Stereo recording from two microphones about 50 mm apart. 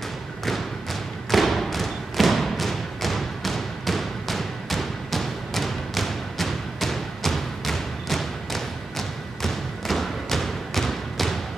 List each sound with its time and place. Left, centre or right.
1.3 s thump: centre